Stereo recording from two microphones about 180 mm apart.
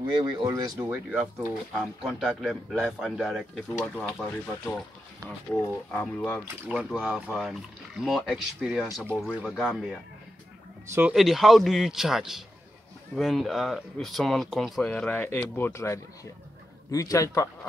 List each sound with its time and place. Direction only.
0.1 s speech: 25° right (ahead or behind); by 6.4 s 10° left (ahead or behind)
6.7 s speech: 5° right (ahead or behind); by 17.5 s 15° left (ahead or behind)